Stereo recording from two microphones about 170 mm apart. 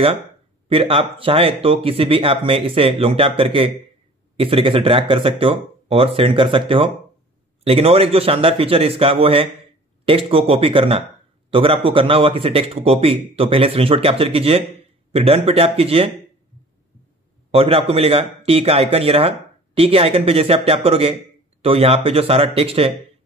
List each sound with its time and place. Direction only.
0.7 s a man's voice: 35° right (ahead or behind)
17.5 s a man's voice: 35° right (ahead or behind)